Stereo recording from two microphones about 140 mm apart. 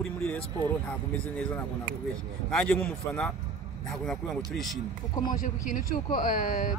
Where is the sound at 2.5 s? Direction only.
5° left (ahead or behind).